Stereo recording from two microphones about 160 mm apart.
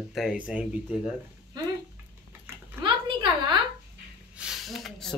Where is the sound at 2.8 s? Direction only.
30° right (ahead or behind).